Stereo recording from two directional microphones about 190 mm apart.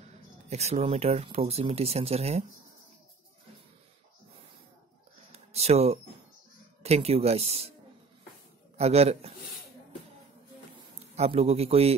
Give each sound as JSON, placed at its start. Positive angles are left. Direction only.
{"t": 0.5, "sound": "speech", "side_deg": -35}
{"t": 5.3, "sound": "a sound", "side_deg": -35}
{"t": 6.8, "sound": "speech", "side_deg": -35}
{"t": 8.7, "sound": "speech", "side_deg": -35}
{"t": 11.1, "sound": "speech", "side_deg": -35}